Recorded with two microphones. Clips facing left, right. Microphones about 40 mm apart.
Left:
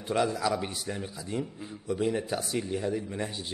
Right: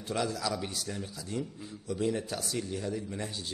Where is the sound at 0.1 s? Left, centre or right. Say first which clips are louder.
Left 5 dB; left.